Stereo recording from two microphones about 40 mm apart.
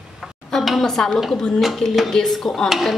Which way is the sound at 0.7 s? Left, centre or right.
Centre.